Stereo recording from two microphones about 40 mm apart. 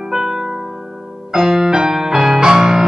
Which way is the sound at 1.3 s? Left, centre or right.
Centre.